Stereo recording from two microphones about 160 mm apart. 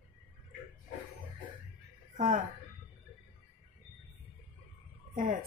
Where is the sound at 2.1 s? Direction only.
55° right (ahead or behind).